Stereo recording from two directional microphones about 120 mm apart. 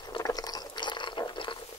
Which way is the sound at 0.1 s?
30° left (ahead or behind).